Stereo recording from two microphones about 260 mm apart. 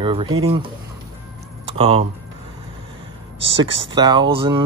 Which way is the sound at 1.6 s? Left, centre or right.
Right.